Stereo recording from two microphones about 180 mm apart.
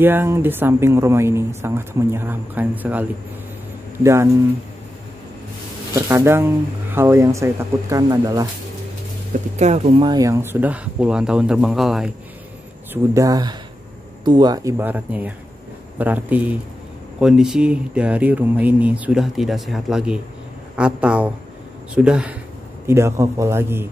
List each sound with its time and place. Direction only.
0.0 s speech: 10° right (ahead or behind)
5.9 s speech: 15° right (ahead or behind)
9.6 s speech: 35° right (ahead or behind); by 12.1 s centre (ahead or behind)
12.9 s speech: 15° right (ahead or behind)